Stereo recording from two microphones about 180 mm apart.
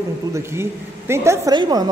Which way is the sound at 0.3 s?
15° right (ahead or behind).